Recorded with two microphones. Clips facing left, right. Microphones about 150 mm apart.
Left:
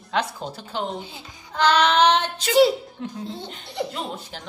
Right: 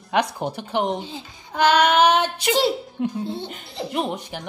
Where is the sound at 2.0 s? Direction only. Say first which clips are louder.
Right 1 dB; 10° right (ahead or behind).